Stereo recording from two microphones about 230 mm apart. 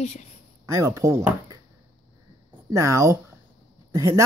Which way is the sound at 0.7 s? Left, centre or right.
Centre.